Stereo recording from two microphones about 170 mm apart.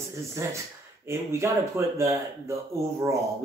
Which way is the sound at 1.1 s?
15° right (ahead or behind).